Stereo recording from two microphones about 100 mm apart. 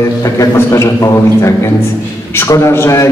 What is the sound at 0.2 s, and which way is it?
A man's voice, 30° left (ahead or behind).